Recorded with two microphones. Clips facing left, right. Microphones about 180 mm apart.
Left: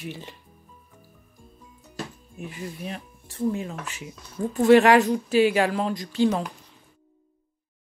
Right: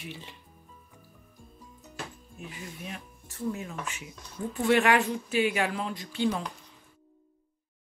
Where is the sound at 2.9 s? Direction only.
30° left (ahead or behind).